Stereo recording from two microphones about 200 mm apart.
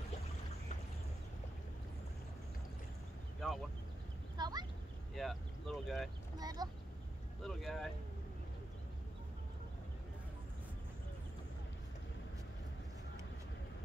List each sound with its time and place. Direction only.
4.4 s fowl: 20° right (ahead or behind)
5.1 s speech: centre (ahead or behind)
6.3 s vehicle: 20° right (ahead or behind)
7.4 s speech: centre (ahead or behind)